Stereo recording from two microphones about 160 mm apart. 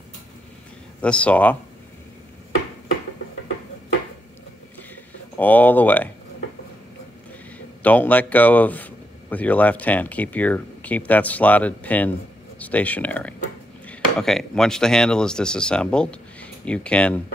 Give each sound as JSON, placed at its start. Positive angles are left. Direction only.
{"t": 1.0, "sound": "speech", "side_deg": 10}
{"t": 5.4, "sound": "speech", "side_deg": 10}
{"t": 7.5, "sound": "speech", "side_deg": 10}